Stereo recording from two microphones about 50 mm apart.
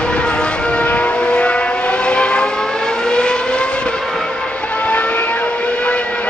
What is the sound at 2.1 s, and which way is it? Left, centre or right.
Vehicle, centre.